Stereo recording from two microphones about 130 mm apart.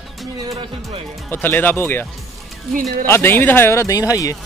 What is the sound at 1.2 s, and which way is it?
Speech, 15° left (ahead or behind).